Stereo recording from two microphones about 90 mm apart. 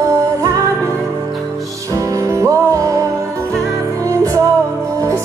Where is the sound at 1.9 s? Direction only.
40° right (ahead or behind).